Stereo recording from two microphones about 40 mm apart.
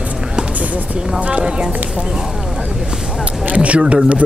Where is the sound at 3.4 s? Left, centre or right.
Right.